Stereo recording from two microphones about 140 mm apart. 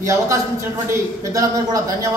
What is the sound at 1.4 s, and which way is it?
Speech, 25° right (ahead or behind).